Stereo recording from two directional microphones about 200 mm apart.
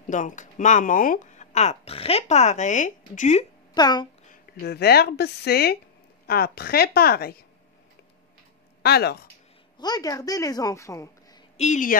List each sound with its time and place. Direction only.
0.0 s speech: 40° left (ahead or behind)
3.7 s speech: 20° left (ahead or behind)
4.3 s a woman's voice: 50° left (ahead or behind)
8.8 s a woman's voice: 55° left (ahead or behind)
9.8 s speech: 20° left (ahead or behind)
11.5 s speech: 35° left (ahead or behind)